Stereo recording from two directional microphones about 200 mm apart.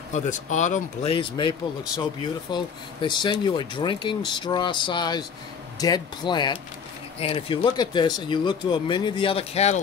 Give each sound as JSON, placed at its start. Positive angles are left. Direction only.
{"t": 0.1, "sound": "speech", "side_deg": 35}
{"t": 1.1, "sound": "speech", "side_deg": 25}